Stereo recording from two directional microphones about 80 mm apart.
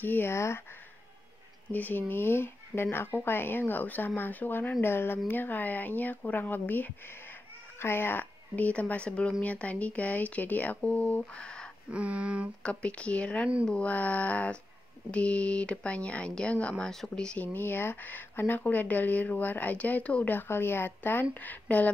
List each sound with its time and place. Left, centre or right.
0.0 s speech: left
1.7 s speech: left
11.9 s speech: centre
12.6 s speech: centre
17.5 s speech: left